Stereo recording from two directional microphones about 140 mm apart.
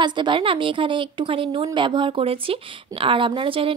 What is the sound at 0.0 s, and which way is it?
A woman's voice, 35° right (ahead or behind).